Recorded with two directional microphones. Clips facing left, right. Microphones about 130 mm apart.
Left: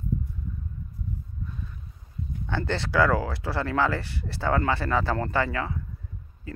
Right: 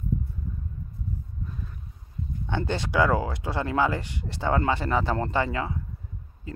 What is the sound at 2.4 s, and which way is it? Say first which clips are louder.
Speech: even; 20° right (ahead or behind).